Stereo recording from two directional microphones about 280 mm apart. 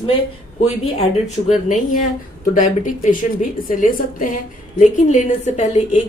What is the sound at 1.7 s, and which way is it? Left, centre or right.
Speech, left.